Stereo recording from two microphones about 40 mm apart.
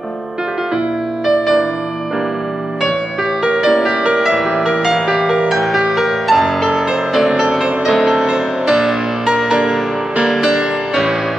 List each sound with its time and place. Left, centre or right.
1.3 s music: centre
3.4 s music: centre
5.5 s music: centre
7.9 s music: centre